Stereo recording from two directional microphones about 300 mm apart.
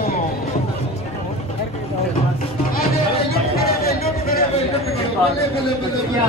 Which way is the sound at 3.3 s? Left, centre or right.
Left.